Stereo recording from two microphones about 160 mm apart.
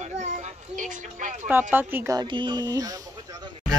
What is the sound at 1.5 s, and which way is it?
Speech, 10° right (ahead or behind).